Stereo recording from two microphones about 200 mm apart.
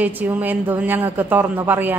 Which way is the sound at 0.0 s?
10° right (ahead or behind).